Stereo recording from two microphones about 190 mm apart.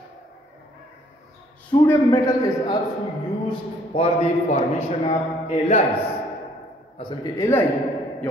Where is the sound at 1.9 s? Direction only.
15° left (ahead or behind).